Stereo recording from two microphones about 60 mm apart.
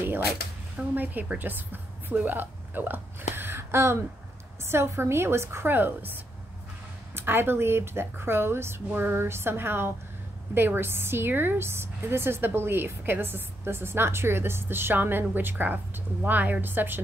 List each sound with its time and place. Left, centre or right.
0.9 s a woman's voice: right